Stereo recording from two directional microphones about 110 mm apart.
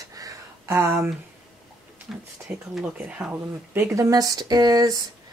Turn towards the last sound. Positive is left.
turn(degrees=-35)  # may be behind; listen again after turning